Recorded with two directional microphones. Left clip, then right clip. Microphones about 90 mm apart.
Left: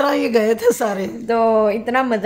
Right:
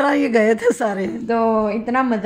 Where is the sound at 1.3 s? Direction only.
50° left (ahead or behind).